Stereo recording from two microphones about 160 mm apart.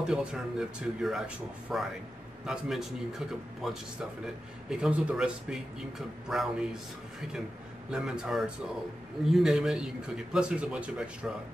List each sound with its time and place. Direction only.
0.0 s a man's voice: 5° right (ahead or behind)